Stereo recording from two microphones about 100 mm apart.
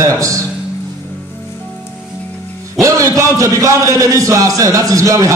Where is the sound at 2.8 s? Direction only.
30° right (ahead or behind).